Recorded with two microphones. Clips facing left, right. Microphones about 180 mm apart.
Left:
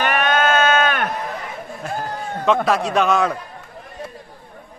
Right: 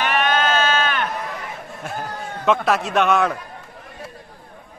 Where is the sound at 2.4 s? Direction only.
Centre (ahead or behind).